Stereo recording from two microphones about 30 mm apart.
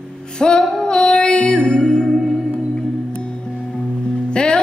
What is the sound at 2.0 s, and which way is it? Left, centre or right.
Music, centre.